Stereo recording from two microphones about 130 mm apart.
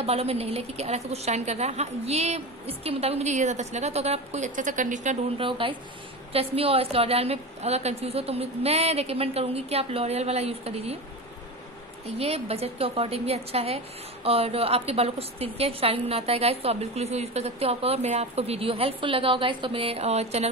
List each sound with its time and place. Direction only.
0.0 s a woman's voice: 50° right (ahead or behind); by 5.1 s 75° right (ahead or behind)
5.4 s a woman's voice: 45° right (ahead or behind)
12.2 s a woman's voice: 50° right (ahead or behind)